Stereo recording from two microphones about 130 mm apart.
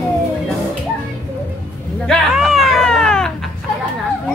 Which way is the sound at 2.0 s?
Centre (ahead or behind).